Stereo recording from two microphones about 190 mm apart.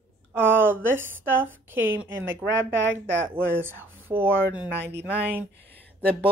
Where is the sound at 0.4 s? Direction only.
10° right (ahead or behind).